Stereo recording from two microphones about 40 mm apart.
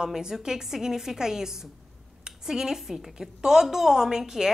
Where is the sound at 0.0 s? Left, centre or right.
Centre.